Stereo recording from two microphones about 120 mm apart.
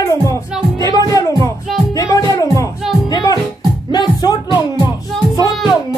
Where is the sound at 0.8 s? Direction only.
30° left (ahead or behind).